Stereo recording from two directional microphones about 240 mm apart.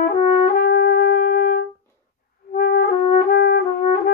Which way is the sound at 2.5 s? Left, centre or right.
Left.